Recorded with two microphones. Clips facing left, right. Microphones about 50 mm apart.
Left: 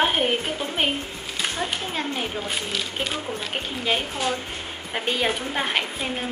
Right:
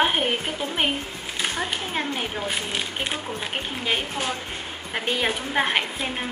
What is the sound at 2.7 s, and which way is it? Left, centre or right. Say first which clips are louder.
Speech: even; right.